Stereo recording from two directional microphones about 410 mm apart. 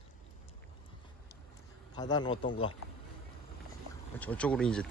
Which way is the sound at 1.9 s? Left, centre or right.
Centre.